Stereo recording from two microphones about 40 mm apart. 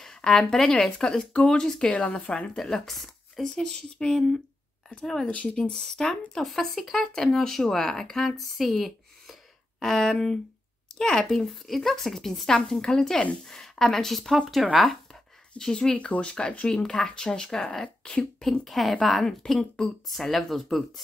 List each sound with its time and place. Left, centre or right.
0.0 s speech: centre
2.5 s speech: centre
5.3 s speech: left
5.6 s speech: centre
8.5 s a sound: centre
11.0 s a woman's voice: centre
15.5 s speech: left
18.7 s a woman's voice: centre